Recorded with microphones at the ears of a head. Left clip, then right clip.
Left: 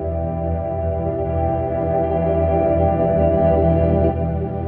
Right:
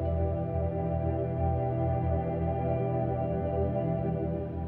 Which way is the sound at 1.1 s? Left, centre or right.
Left.